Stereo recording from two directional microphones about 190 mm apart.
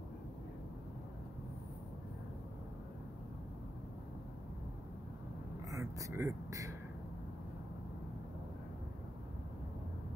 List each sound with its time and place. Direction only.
5.7 s speech: 15° right (ahead or behind)